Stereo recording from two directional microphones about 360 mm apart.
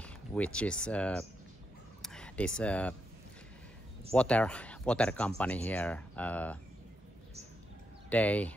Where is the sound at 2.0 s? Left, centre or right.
Centre.